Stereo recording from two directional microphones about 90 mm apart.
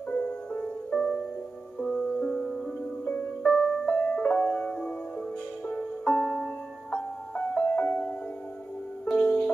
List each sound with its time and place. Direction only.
0.1 s music: 15° left (ahead or behind)
6.9 s music: 20° left (ahead or behind)
9.0 s music: 5° left (ahead or behind)